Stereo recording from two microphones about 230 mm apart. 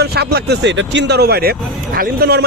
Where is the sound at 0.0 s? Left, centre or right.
Right.